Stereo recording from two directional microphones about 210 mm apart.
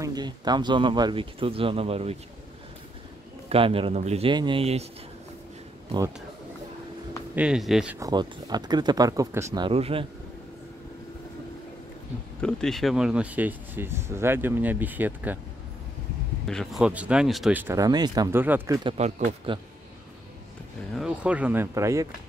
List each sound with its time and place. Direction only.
0.0 s speech: 20° right (ahead or behind)
3.4 s speech: 25° right (ahead or behind)
5.9 s speech: 15° right (ahead or behind)
7.3 s speech: 5° right (ahead or behind)
8.0 s speech: 20° right (ahead or behind)
9.7 s speech: 25° right (ahead or behind)
12.4 s speech: 5° left (ahead or behind)
16.4 s speech: centre (ahead or behind)
18.9 s speech: 30° right (ahead or behind)
20.9 s speech: 5° right (ahead or behind)